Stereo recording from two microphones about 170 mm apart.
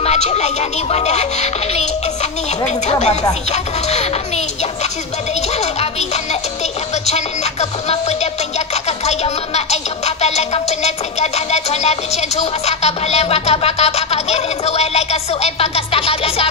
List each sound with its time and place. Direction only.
0.0 s speech: 40° left (ahead or behind)
2.9 s speech: 40° left (ahead or behind)
5.6 s music: 40° left (ahead or behind)
7.9 s speech: 40° left (ahead or behind)